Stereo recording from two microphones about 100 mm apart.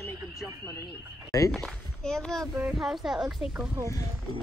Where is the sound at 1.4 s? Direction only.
5° left (ahead or behind).